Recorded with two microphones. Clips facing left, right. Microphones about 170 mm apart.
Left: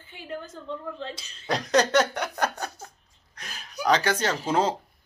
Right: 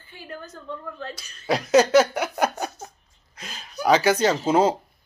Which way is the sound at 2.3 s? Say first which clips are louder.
Right 4 dB; 10° right (ahead or behind).